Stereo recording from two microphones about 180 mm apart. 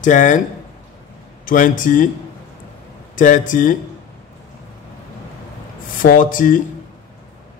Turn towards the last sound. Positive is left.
turn(degrees=50)  # may be behind; listen again after turning